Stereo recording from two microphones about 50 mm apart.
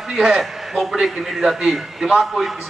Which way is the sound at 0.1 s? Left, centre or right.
Centre.